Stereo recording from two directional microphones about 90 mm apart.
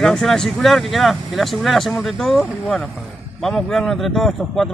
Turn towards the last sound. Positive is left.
turn(degrees=5)  # may be behind; listen again after turning